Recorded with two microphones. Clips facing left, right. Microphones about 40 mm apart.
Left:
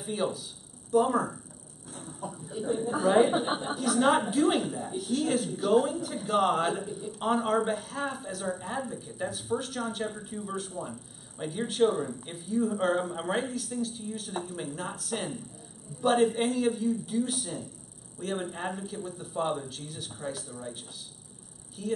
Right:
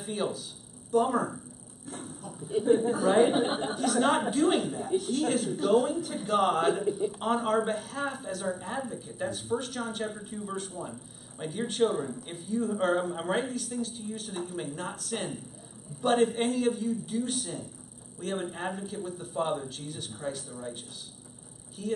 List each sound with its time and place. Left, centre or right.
0.0 s a man's voice: centre
2.5 s a woman's voice: right
3.6 s a man's voice: centre